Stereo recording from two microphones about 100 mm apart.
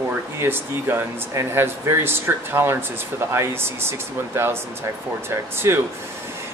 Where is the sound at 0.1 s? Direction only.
25° right (ahead or behind).